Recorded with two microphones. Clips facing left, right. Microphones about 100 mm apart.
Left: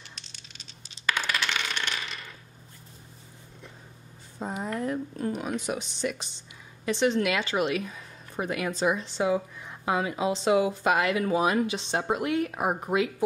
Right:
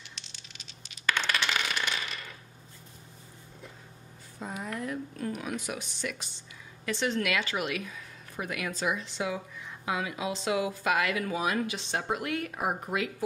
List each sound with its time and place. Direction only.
0.6 s coin: 35° left (ahead or behind)
1.1 s coin: 5° left (ahead or behind)
4.4 s speech: 30° left (ahead or behind)